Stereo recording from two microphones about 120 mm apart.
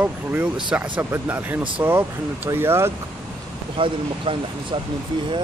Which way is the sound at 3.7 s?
50° right (ahead or behind).